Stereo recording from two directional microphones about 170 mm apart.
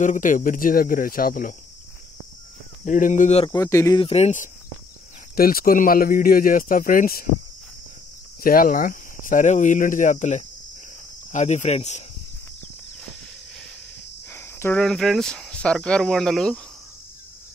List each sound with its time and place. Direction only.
0.0 s speech: 50° left (ahead or behind)
2.8 s speech: 50° left (ahead or behind)
3.4 s speech: 20° left (ahead or behind)
4.0 s speech: 40° left (ahead or behind)
5.3 s speech: 60° left (ahead or behind)
8.4 s speech: 55° left (ahead or behind); by 12.0 s 40° left (ahead or behind)
14.3 s speech: 10° left (ahead or behind)